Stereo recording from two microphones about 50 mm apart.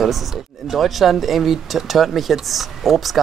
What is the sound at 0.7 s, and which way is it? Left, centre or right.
Speech, centre.